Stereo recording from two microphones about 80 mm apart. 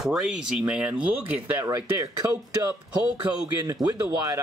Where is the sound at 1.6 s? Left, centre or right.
Right.